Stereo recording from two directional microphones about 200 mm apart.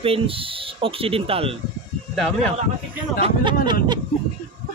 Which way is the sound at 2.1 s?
5° left (ahead or behind).